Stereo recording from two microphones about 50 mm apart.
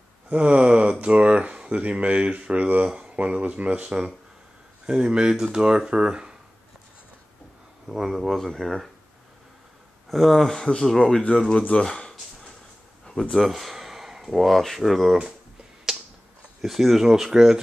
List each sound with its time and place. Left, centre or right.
0.3 s speech: right
7.8 s speech: centre
10.0 s speech: centre
16.6 s speech: centre